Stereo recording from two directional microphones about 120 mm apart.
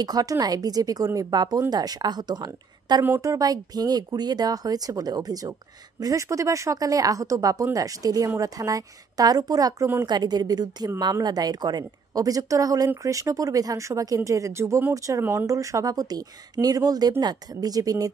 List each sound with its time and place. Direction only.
0.0 s speech: 30° right (ahead or behind)
3.0 s a woman's voice: 25° right (ahead or behind)